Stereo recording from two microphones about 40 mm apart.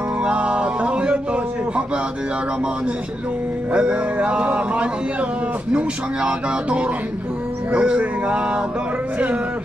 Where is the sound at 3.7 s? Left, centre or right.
Right.